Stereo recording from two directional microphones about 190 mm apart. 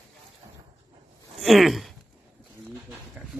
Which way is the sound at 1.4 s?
Centre (ahead or behind).